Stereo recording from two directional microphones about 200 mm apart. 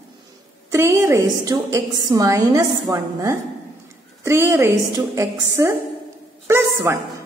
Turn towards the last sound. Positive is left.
turn(degrees=-15)  # may be behind; listen again after turning